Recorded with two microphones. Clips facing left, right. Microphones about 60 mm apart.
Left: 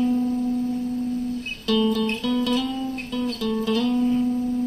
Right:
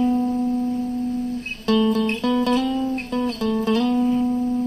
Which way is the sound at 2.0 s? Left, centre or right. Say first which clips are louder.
Right 3 dB; right.